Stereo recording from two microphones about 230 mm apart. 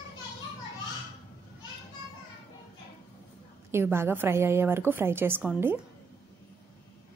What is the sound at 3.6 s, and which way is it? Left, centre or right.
A woman's voice, centre.